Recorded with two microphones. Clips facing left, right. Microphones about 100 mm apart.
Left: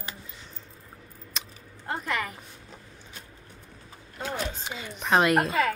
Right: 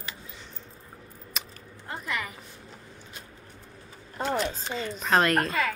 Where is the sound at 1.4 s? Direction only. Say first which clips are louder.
Right 1 dB; 5° right (ahead or behind).